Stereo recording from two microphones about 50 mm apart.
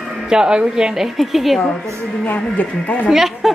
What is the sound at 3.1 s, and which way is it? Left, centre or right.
Speech, centre.